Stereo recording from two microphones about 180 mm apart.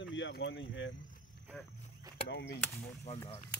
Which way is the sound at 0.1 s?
85° left.